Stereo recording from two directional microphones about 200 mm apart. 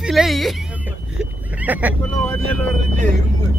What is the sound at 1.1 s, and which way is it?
Vehicle, 10° right (ahead or behind).